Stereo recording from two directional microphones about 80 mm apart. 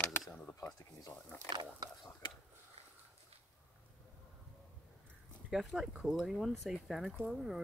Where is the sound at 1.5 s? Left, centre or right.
Right.